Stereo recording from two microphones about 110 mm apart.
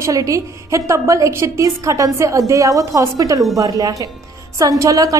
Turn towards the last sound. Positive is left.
turn(degrees=-30)  # may be behind; listen again after turning